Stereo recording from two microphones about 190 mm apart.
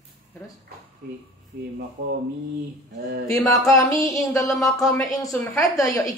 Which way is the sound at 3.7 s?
15° left (ahead or behind).